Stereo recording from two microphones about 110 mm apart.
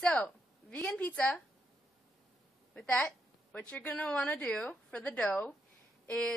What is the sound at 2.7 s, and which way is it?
A woman's voice, 10° left (ahead or behind).